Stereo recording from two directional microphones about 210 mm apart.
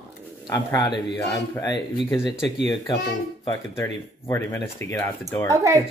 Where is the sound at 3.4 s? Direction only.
15° left (ahead or behind).